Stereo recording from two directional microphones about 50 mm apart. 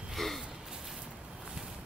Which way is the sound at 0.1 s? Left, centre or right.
Centre.